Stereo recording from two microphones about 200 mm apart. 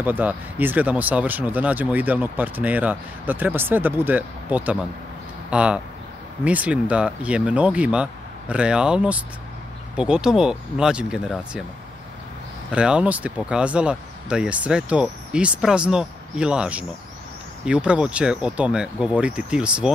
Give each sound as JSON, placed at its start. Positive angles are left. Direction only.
{"t": 0.0, "sound": "speech", "side_deg": -10}
{"t": 12.7, "sound": "speech", "side_deg": -5}